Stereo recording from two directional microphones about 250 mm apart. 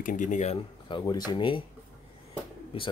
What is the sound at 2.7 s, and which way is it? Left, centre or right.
Speech, left.